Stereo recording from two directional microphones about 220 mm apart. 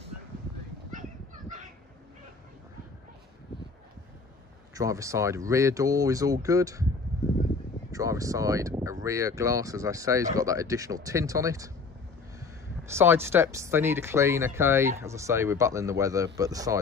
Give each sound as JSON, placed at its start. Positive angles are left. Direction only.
{"t": 4.7, "sound": "speech", "side_deg": -15}
{"t": 7.9, "sound": "speech", "side_deg": -15}
{"t": 12.8, "sound": "speech", "side_deg": -10}